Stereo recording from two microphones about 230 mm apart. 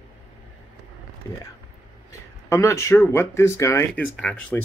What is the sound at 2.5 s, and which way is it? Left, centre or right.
Speech, centre.